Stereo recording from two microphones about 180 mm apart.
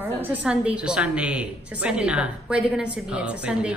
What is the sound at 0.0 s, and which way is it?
A woman's voice, 10° right (ahead or behind).